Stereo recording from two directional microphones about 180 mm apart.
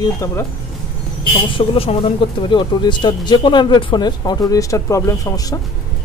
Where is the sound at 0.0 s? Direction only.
15° left (ahead or behind).